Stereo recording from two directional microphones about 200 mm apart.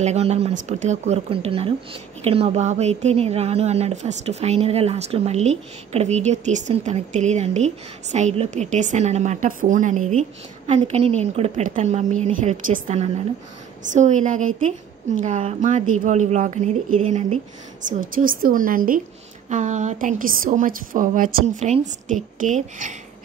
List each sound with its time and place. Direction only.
0.0 s a woman's voice: 35° right (ahead or behind)